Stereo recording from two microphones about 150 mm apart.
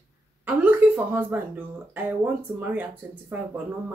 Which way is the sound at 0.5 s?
10° right (ahead or behind).